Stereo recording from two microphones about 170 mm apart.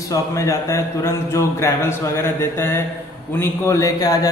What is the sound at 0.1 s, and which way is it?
A man's voice, 15° left (ahead or behind).